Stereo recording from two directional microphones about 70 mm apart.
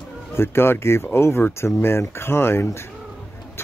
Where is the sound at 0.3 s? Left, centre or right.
Left.